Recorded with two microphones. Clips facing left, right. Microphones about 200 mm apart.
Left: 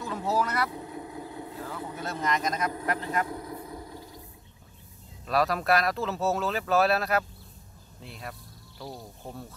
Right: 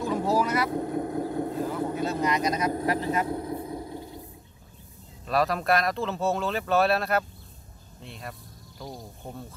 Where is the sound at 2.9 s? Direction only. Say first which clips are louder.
Right 4 dB; 15° right (ahead or behind).